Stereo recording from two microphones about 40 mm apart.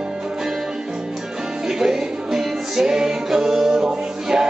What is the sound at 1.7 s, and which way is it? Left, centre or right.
Music, centre.